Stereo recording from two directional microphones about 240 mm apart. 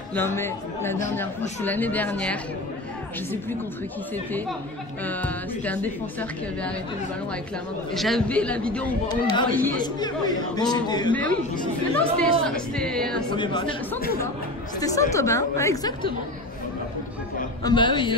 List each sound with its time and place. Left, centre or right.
0.1 s a man's voice: centre
5.0 s a man's voice: centre
7.9 s speech: centre
9.1 s a man's voice: centre
11.9 s speech: centre
13.3 s a man's voice: centre
14.8 s a man's voice: centre
17.6 s a man's voice: centre